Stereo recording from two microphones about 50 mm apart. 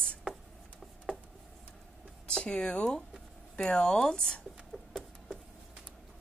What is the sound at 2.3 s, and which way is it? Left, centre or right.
Speech, centre.